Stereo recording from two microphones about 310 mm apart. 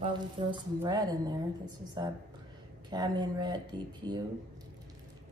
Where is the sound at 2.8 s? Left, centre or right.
Centre.